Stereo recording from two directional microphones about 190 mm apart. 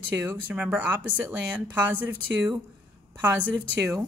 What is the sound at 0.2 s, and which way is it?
Speech, 10° right (ahead or behind).